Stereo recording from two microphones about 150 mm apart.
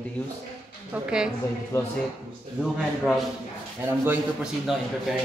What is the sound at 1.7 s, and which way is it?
Speech, 20° left (ahead or behind).